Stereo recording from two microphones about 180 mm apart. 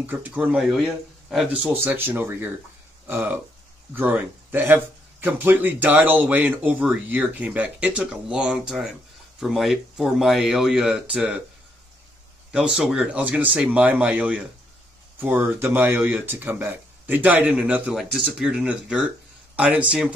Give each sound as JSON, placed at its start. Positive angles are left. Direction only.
{"t": 0.0, "sound": "a man's voice", "side_deg": -10}
{"t": 12.5, "sound": "a man's voice", "side_deg": -5}